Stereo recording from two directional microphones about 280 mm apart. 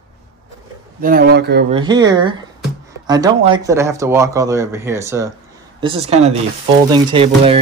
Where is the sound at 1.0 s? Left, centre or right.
Right.